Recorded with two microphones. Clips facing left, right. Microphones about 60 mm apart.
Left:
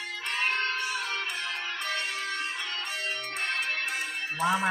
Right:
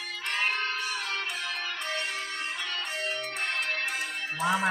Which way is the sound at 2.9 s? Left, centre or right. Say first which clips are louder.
Right 1 dB; centre.